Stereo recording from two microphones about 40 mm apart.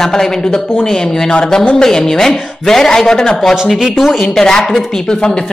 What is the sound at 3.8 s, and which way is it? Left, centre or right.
Speech, centre.